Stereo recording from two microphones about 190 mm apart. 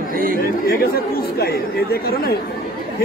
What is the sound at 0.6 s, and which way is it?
Speech, 55° left (ahead or behind).